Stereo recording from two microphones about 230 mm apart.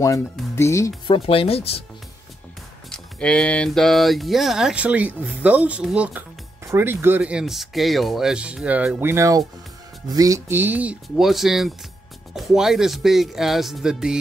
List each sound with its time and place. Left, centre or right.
0.0 s speech: centre
2.9 s speech: centre